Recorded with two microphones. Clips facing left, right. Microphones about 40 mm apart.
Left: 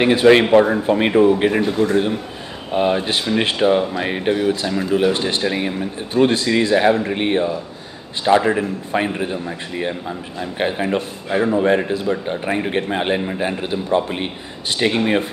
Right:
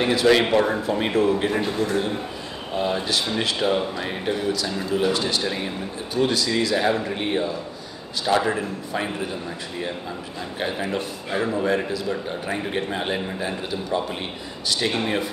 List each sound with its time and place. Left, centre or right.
0.0 s a man's voice: left
1.6 s speech: centre
2.7 s a man's voice: left